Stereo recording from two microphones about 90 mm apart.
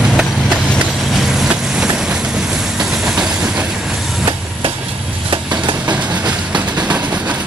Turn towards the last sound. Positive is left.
turn(degrees=-15)  # may be behind; listen again after turning